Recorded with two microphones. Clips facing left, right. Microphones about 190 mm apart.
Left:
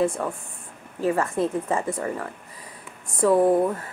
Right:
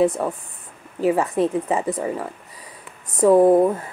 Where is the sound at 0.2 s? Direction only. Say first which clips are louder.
Right 4 dB; 15° right (ahead or behind).